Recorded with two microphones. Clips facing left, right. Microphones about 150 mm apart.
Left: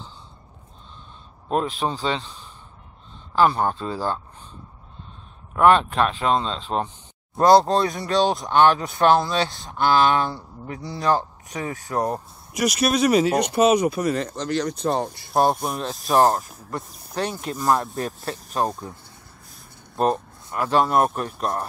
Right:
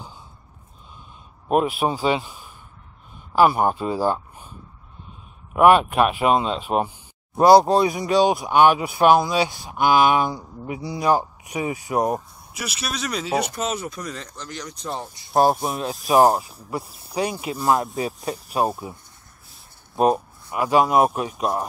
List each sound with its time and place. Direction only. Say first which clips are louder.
1.5 s speech: right 3 dB; 10° right (ahead or behind)
12.5 s speech: left 10 dB; 45° left (ahead or behind)
12.9 s speech: left 11 dB; 55° left (ahead or behind)
13.5 s speech: left 10 dB; 65° left (ahead or behind)
15.3 s speech: right 2 dB; centre (ahead or behind)
20.5 s speech: right 2 dB; 10° right (ahead or behind)